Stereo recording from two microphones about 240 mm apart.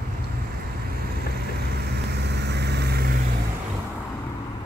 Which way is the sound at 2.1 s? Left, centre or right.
Right.